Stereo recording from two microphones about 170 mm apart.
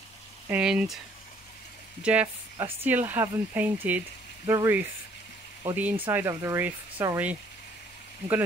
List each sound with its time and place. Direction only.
0.5 s speech: 5° right (ahead or behind)
2.0 s speech: 10° right (ahead or behind)